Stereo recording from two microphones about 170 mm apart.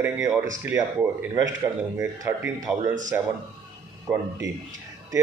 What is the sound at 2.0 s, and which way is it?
Speech, 15° right (ahead or behind).